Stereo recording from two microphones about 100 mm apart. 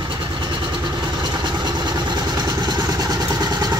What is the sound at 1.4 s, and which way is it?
Vehicle, 50° right (ahead or behind).